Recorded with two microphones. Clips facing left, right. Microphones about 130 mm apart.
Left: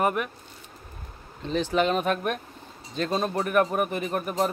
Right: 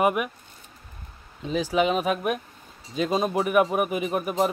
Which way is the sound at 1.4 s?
5° right (ahead or behind).